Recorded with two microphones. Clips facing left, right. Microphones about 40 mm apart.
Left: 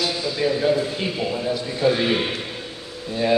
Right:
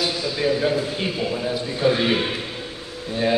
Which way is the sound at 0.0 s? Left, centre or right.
Centre.